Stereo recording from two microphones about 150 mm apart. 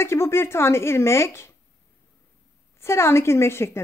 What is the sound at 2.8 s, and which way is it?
Speech, 15° left (ahead or behind).